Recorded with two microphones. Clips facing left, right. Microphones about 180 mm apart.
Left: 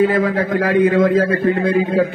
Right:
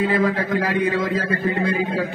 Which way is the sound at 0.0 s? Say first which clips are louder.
Left 4 dB; 50° left (ahead or behind).